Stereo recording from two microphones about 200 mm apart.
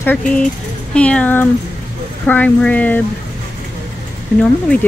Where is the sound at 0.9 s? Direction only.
5° left (ahead or behind).